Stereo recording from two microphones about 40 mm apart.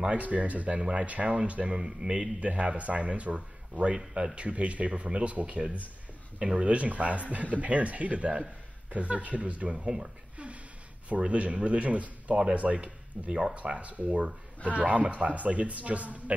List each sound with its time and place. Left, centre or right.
0.1 s a man's voice: right
1.8 s speech: right
2.4 s a man's voice: right
10.3 s a sound: right
11.1 s a man's voice: right